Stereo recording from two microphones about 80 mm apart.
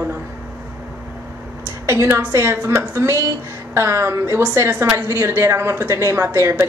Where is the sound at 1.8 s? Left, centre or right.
Right.